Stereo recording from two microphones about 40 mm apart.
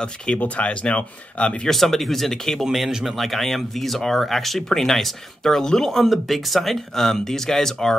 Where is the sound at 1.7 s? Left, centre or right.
Centre.